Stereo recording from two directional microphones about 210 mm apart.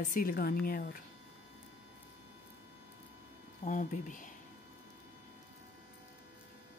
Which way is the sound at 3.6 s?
40° left (ahead or behind).